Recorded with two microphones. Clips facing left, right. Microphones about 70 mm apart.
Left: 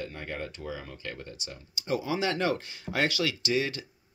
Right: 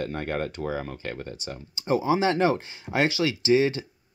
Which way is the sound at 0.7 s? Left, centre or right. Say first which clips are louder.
Right 7 dB; right.